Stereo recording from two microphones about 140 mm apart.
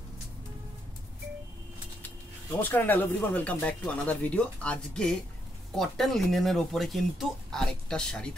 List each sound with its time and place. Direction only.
2.6 s speech: 10° left (ahead or behind)